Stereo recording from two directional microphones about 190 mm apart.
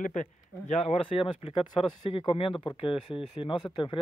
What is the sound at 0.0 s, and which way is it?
Speech, 40° left (ahead or behind).